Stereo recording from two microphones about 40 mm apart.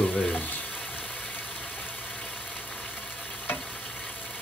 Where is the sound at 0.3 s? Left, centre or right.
Left.